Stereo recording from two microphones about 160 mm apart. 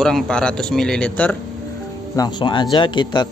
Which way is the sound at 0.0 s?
5° left (ahead or behind).